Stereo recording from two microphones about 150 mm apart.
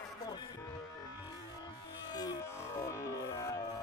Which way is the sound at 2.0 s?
25° left (ahead or behind).